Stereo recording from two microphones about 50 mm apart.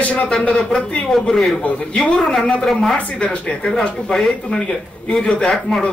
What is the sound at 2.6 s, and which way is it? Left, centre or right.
Speech, centre.